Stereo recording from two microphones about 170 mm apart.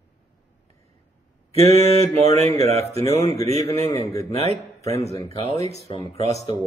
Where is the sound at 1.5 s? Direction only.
40° right (ahead or behind).